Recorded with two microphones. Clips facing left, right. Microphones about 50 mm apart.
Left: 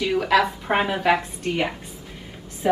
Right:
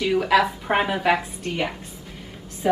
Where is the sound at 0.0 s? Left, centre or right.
Centre.